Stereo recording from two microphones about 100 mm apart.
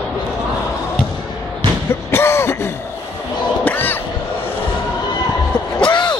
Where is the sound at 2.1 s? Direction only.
25° left (ahead or behind).